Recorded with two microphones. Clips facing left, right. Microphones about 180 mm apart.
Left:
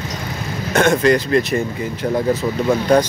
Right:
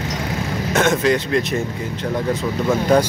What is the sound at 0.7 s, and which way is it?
Speech, 5° right (ahead or behind).